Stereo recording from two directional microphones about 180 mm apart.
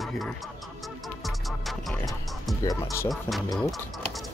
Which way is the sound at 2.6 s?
20° left (ahead or behind).